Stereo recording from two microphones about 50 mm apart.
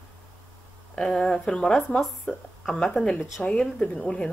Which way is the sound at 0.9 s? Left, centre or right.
Centre.